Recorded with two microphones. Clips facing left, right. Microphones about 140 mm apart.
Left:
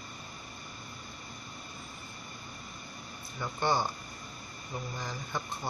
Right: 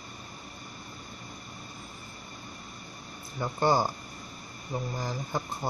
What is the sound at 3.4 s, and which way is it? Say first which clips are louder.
Speech: right 5 dB; 40° right (ahead or behind).